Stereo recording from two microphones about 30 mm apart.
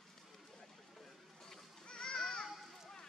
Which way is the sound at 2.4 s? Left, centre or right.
Centre.